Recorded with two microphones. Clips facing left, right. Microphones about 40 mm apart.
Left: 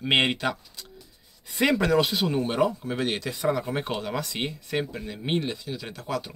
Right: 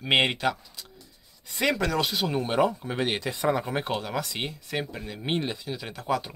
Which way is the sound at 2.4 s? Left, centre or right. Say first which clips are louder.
Right 2 dB; centre.